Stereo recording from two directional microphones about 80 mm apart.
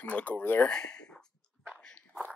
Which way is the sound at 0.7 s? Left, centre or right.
Centre.